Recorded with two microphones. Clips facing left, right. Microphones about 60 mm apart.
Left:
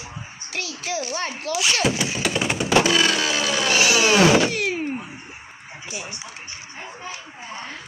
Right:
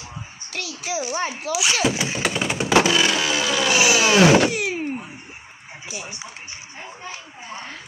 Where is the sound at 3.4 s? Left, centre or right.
Right.